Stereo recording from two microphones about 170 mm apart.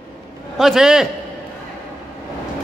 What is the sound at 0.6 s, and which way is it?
Speech, centre (ahead or behind).